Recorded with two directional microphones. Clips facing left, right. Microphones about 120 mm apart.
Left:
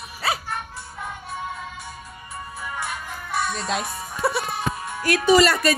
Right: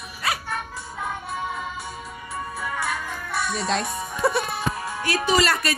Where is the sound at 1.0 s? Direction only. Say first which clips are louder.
Right 3 dB; 90° right.